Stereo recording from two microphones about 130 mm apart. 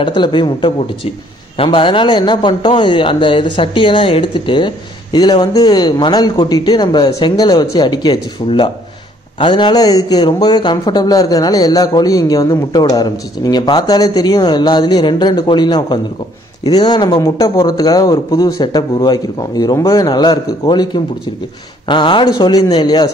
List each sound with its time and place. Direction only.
0.0 s a man's voice: 35° left (ahead or behind)